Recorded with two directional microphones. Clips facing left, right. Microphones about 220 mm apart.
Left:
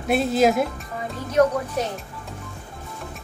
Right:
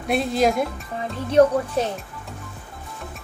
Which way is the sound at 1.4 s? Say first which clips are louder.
Right 3 dB; 30° right (ahead or behind).